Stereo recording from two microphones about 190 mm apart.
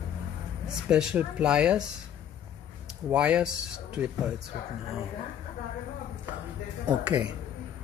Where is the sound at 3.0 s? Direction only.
5° right (ahead or behind).